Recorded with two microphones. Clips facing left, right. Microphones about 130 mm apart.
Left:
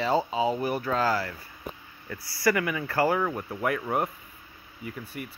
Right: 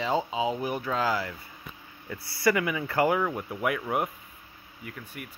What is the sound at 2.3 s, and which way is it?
Speech, 20° right (ahead or behind).